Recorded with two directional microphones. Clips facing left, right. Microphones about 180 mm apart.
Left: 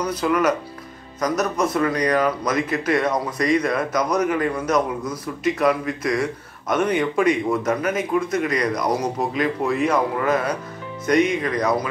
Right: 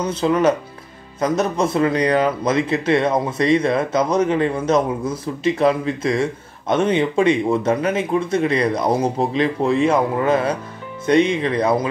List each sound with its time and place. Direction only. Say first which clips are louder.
0.0 s a man's voice: right 3 dB; 25° right (ahead or behind)